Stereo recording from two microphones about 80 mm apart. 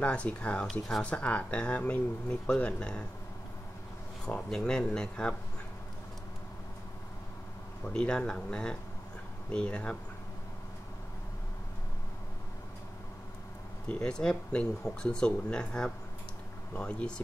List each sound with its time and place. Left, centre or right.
0.0 s speech: centre
0.7 s speech: centre
1.0 s speech: centre
4.3 s speech: centre
7.8 s speech: centre
13.8 s speech: centre